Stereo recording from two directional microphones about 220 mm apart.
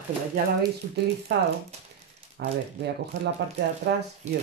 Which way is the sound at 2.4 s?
50° right (ahead or behind).